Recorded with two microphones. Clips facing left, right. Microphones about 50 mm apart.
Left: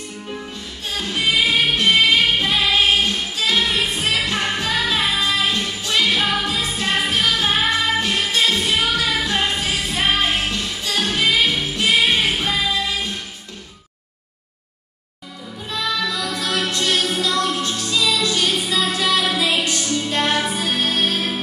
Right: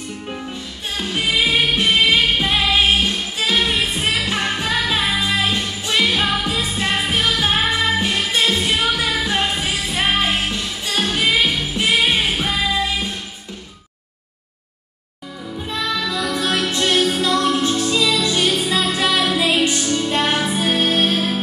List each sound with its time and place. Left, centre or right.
0.9 s music: centre
15.7 s music: right